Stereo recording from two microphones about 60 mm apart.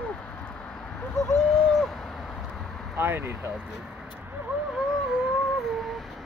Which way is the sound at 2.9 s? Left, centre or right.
Right.